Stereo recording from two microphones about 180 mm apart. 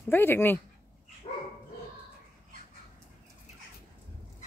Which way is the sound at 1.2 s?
30° left (ahead or behind).